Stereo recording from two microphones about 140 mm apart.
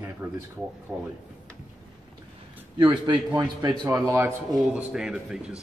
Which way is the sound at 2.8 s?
35° right (ahead or behind).